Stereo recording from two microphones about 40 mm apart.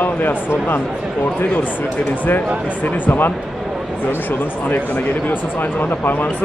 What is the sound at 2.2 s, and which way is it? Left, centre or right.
Speech, left.